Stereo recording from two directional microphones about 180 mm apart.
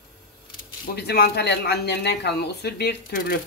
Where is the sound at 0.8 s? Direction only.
65° left (ahead or behind).